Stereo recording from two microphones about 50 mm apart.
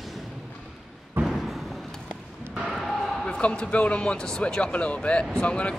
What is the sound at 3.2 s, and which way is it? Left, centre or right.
A man's voice, left.